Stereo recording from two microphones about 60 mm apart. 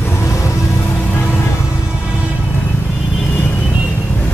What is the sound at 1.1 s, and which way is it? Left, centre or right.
Music, left.